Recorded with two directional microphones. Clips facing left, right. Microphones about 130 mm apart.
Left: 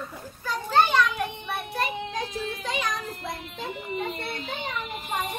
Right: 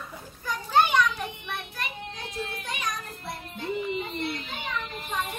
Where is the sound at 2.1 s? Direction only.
90° left.